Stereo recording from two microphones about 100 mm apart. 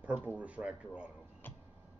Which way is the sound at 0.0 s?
15° right (ahead or behind).